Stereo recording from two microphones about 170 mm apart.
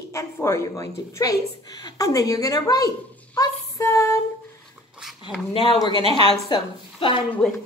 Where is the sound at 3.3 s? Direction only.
20° left (ahead or behind).